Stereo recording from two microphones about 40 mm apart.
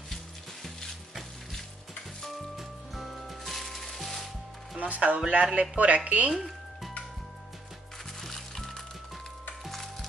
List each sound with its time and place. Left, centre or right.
2.5 s music: centre
4.7 s speech: right
8.2 s music: centre